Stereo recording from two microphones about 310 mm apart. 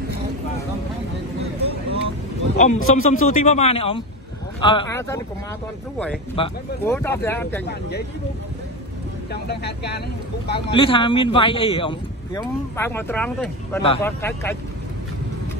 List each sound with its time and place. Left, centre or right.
1.4 s vehicle: centre
2.5 s a man's voice: left
6.3 s speech: centre
9.3 s speech: left
10.7 s speech: centre